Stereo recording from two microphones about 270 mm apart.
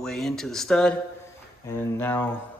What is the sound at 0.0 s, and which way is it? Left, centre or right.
Speech, centre.